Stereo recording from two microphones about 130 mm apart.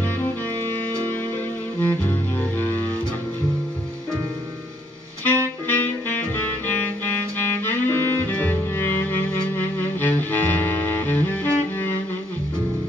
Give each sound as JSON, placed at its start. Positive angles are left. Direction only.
{"t": 0.0, "sound": "music", "side_deg": 15}
{"t": 5.2, "sound": "music", "side_deg": 15}